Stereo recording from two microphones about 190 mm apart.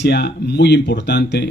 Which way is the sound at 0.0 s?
60° left (ahead or behind).